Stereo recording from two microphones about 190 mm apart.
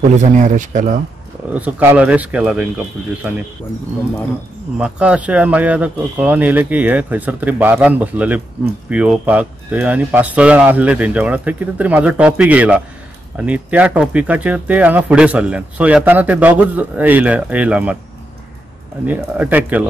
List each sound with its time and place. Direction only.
0.2 s speech: 40° right (ahead or behind)
1.5 s speech: 10° right (ahead or behind)
4.7 s speech: 5° right (ahead or behind)
19.0 s speech: 10° right (ahead or behind)